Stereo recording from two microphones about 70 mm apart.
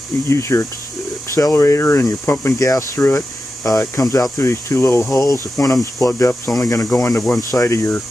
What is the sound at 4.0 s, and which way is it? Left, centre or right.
Speech, left.